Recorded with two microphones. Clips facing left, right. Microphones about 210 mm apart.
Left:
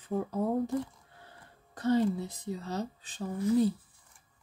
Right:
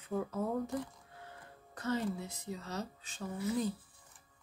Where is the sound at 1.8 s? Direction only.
30° left (ahead or behind).